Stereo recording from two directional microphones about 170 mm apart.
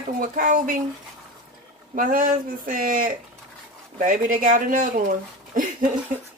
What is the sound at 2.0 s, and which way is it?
Speech, 55° right (ahead or behind).